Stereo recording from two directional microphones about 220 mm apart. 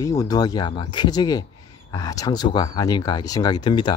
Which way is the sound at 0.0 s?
15° left (ahead or behind).